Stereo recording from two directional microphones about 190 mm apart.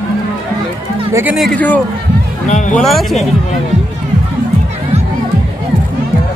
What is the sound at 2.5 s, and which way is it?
Speech, 40° left (ahead or behind).